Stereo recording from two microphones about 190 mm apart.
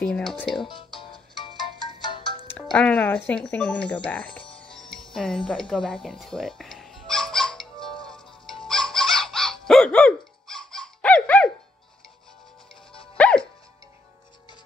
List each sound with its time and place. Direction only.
0.1 s speech: 5° left (ahead or behind)
0.6 s speech: 25° left (ahead or behind)
1.1 s music: 25° left (ahead or behind)
2.4 s speech: 10° left (ahead or behind)
4.4 s music: 25° left (ahead or behind)
4.7 s music: centre (ahead or behind)
8.6 s bird: centre (ahead or behind)
12.9 s music: 30° left (ahead or behind)